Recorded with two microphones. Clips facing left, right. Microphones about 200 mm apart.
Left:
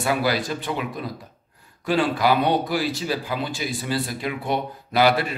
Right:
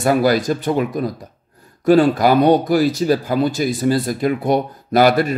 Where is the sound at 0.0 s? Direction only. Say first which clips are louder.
Right 8 dB; 45° right (ahead or behind).